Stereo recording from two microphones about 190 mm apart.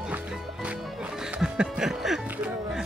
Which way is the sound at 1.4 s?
5° right (ahead or behind).